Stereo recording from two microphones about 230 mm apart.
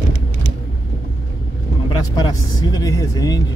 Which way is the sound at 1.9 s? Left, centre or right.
Centre.